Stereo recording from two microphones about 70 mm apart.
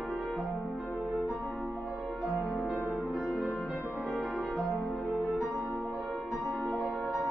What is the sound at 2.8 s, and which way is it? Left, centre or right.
Music, right.